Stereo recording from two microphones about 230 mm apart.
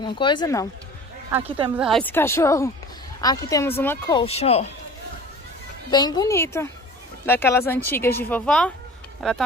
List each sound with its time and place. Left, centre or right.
0.0 s speech: centre
1.8 s speech: centre; by 4.6 s left
5.9 s speech: centre